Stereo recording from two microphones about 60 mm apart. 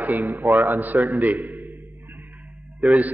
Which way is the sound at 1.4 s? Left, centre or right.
Right.